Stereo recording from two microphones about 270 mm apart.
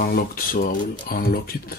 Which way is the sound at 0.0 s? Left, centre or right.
Left.